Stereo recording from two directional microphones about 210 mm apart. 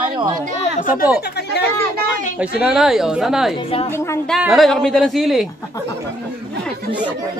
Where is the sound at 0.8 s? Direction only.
40° left (ahead or behind).